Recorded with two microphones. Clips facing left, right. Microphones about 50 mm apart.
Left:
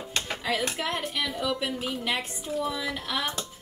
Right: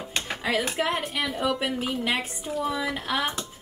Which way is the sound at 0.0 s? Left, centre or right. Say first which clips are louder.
Right 2 dB; centre.